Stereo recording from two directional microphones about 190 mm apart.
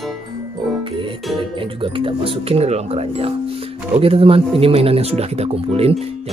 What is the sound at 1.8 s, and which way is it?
Speech, 30° right (ahead or behind).